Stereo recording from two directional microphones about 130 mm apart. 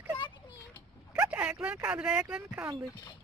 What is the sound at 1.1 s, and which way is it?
Speech, 10° right (ahead or behind).